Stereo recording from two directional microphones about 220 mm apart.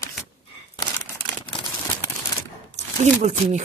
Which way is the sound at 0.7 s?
10° left (ahead or behind).